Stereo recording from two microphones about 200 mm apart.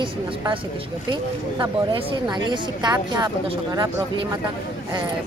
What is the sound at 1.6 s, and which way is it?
Speech, 20° right (ahead or behind).